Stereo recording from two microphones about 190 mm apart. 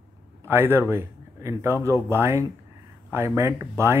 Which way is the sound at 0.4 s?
10° right (ahead or behind).